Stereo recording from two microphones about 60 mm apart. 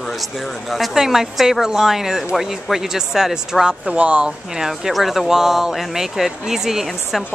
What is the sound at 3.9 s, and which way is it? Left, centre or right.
Speech, centre.